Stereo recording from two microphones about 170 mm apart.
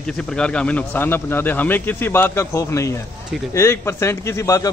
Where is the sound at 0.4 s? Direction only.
5° left (ahead or behind).